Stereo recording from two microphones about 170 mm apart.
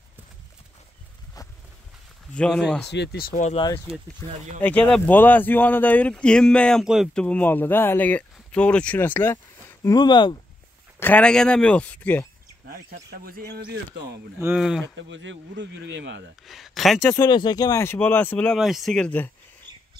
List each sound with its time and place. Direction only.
2.3 s speech: centre (ahead or behind)
2.9 s speech: 85° left; by 3.4 s 60° left (ahead or behind)
3.9 s speech: 35° right (ahead or behind)
4.6 s speech: 10° left (ahead or behind); by 10.3 s 25° left (ahead or behind)
11.0 s speech: 10° left (ahead or behind)
13.2 s speech: 65° right (ahead or behind)
14.6 s speech: centre (ahead or behind)
15.0 s speech: 90° right
16.4 s speech: centre (ahead or behind)
17.1 s speech: 25° left (ahead or behind)